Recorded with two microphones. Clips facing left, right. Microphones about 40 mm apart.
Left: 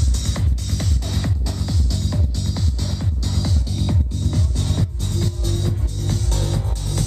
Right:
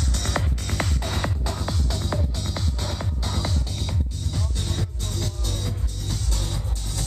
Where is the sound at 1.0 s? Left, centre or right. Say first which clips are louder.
Left 1 dB; right.